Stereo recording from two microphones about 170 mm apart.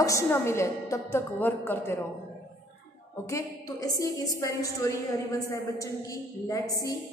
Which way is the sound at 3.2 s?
20° left (ahead or behind).